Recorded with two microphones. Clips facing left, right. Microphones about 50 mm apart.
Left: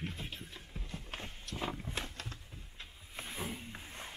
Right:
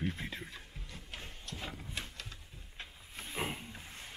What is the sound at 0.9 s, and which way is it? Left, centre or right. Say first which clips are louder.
Clip-clop: left 3 dB; left.